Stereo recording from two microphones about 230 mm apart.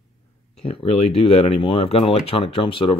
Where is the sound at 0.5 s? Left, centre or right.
Left.